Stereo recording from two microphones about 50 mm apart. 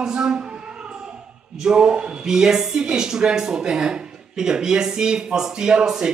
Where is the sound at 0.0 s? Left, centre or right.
Centre.